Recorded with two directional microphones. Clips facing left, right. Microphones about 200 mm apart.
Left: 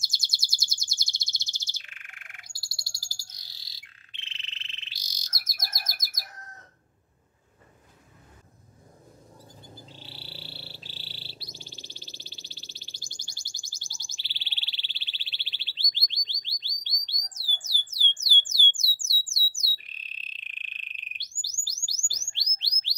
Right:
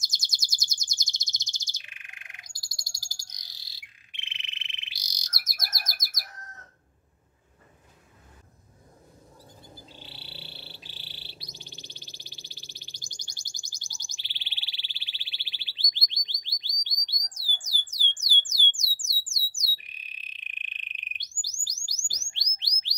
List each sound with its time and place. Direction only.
0.0 s chirp: 20° right (ahead or behind)
10.0 s bird: 20° right (ahead or behind)
18.2 s a sound: 15° right (ahead or behind)
18.7 s squawk: 15° right (ahead or behind)
21.8 s bird: 15° right (ahead or behind)